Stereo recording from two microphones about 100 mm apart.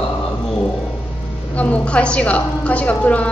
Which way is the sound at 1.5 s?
15° left (ahead or behind).